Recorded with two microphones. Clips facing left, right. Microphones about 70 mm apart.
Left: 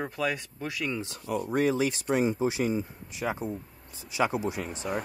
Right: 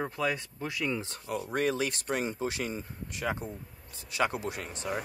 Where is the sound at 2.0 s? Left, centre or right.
Left.